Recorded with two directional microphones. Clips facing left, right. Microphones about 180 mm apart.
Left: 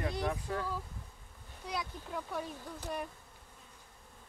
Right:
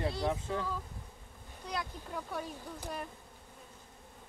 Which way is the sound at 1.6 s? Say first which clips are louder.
Even; centre (ahead or behind).